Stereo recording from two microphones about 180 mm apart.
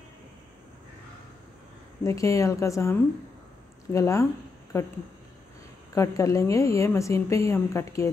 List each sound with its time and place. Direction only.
2.0 s a woman's voice: 15° left (ahead or behind)
5.9 s a woman's voice: 15° left (ahead or behind)